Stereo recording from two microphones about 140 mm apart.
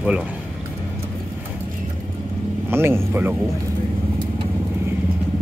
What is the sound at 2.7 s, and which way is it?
Speech, 15° right (ahead or behind).